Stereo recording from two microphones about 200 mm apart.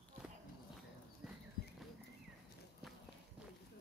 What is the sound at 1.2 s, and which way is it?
Clip-clop, centre (ahead or behind).